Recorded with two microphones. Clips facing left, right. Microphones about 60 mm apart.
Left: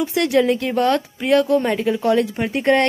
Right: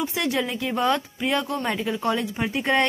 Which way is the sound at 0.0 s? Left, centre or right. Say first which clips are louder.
Left 8 dB; centre.